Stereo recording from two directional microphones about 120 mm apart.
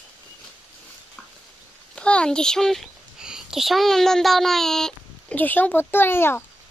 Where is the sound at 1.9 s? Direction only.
10° left (ahead or behind).